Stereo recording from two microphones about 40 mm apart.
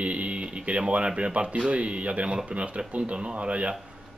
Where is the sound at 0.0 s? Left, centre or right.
Right.